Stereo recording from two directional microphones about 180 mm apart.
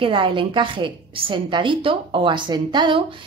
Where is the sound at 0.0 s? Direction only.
30° right (ahead or behind).